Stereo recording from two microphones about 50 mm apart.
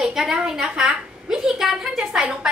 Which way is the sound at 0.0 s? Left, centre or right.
Centre.